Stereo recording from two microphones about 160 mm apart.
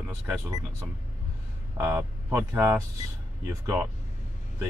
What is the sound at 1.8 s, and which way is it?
Speech, 15° right (ahead or behind).